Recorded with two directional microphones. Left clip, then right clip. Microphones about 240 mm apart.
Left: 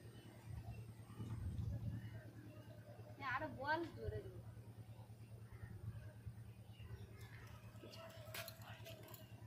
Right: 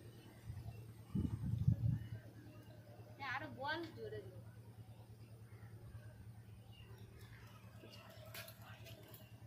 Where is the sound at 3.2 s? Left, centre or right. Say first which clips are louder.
Even; centre.